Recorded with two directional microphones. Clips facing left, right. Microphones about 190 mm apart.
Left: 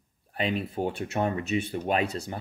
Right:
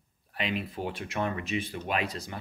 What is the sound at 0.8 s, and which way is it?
Speech, 40° left (ahead or behind).